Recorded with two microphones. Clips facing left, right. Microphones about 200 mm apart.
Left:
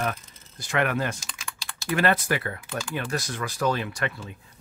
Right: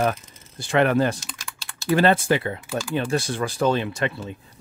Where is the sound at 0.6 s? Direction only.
30° right (ahead or behind).